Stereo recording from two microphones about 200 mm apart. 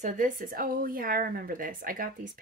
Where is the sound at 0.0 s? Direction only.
40° right (ahead or behind).